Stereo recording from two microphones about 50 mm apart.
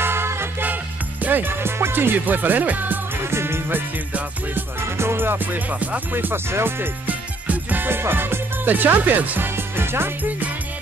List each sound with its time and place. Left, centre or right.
0.0 s music: right
1.2 s speech: right
3.3 s music: right
7.1 s music: right
9.6 s music: right